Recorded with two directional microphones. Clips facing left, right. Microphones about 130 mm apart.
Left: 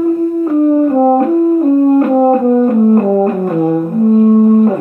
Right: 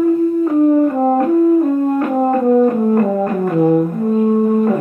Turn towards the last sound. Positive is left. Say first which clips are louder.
# left 6 dB
turn(degrees=25)  # may be behind; listen again after turning